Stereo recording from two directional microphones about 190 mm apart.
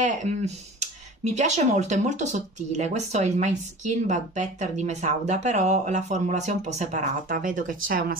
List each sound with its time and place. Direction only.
0.0 s speech: 40° right (ahead or behind)